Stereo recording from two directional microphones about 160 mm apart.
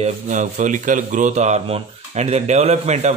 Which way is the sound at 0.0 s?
45° right (ahead or behind).